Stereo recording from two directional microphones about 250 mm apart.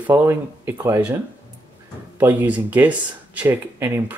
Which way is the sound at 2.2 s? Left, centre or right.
Centre.